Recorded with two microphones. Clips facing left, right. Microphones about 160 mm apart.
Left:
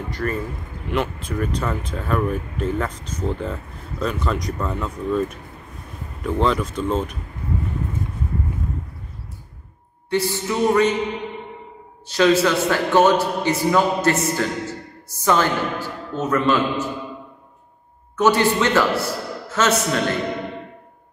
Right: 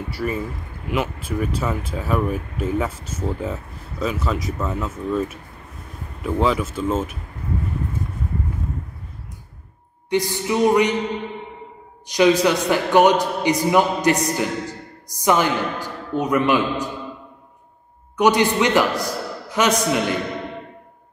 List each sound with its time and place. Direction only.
0.1 s a man's voice: 10° right (ahead or behind)
10.0 s a man's voice: 15° right (ahead or behind)
12.1 s a man's voice: 15° right (ahead or behind)
18.1 s a man's voice: 15° right (ahead or behind)